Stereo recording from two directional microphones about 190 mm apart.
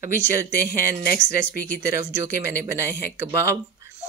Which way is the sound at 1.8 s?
15° right (ahead or behind).